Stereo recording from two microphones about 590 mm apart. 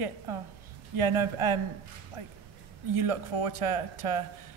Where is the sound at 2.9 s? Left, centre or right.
Right.